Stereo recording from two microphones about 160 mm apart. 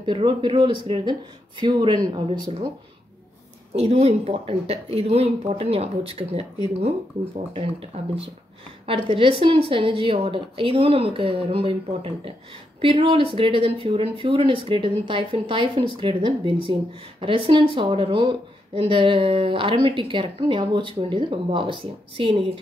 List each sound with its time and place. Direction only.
0.0 s speech: 30° right (ahead or behind)
3.8 s speech: 40° right (ahead or behind)
8.8 s speech: 35° right (ahead or behind)